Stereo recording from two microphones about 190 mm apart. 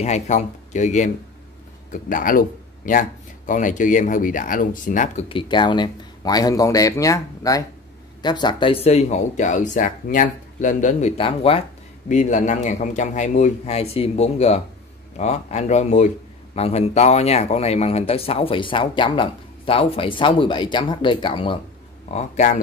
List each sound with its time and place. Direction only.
0.0 s speech: 35° left (ahead or behind)
5.3 s speech: 25° left (ahead or behind)
22.1 s speech: 40° left (ahead or behind)